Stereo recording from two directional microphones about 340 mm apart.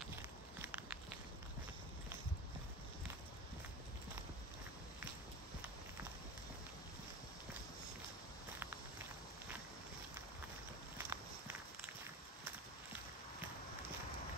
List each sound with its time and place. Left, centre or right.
0.6 s walk: centre
11.0 s walk: centre